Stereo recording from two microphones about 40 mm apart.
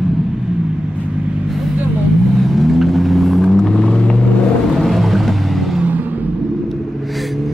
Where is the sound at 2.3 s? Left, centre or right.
Centre; by 4.3 s left.